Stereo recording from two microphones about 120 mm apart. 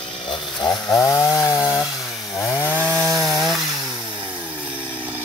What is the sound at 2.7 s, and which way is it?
Chainsaw, 10° left (ahead or behind).